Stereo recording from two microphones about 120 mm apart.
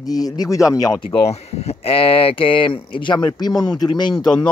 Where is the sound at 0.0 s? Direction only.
30° left (ahead or behind).